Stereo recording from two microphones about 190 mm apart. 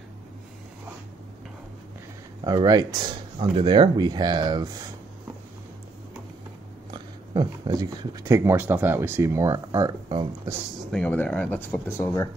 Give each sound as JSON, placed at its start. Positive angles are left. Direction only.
{"t": 2.4, "sound": "speech", "side_deg": -20}
{"t": 6.9, "sound": "speech", "side_deg": -20}
{"t": 10.9, "sound": "speech", "side_deg": 5}